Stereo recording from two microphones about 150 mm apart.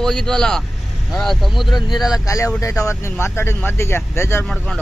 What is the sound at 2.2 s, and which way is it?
Speech, 20° left (ahead or behind).